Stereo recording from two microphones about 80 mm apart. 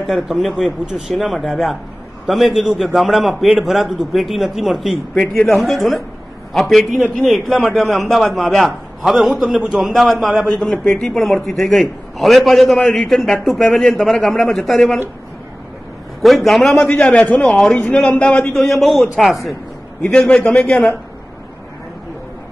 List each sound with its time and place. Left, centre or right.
0.0 s a man's voice: centre
5.1 s a man's voice: centre
5.5 s a man's voice: centre
10.7 s a man's voice: left
11.0 s a man's voice: centre
16.2 s a man's voice: centre
17.5 s a man's voice: centre
17.7 s a man's voice: centre
18.5 s a man's voice: centre
20.0 s a man's voice: centre